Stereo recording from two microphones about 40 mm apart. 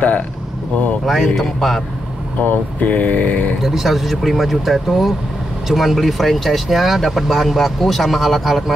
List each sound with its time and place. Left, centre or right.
1.0 s speech: centre
2.4 s speech: left
3.6 s speech: centre